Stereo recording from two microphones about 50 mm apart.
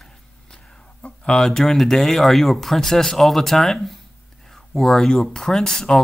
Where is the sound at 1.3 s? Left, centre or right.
Centre.